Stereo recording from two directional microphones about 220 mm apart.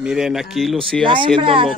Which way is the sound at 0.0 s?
5° right (ahead or behind).